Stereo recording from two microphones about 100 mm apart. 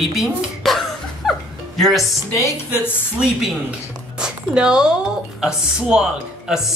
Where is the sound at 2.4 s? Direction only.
20° left (ahead or behind).